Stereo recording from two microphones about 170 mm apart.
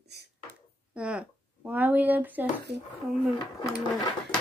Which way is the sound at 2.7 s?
80° right.